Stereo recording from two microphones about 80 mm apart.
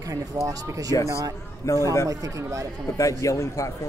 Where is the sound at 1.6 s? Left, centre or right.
Left.